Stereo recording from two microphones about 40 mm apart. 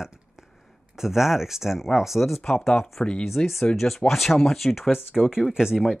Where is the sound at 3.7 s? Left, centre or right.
Centre.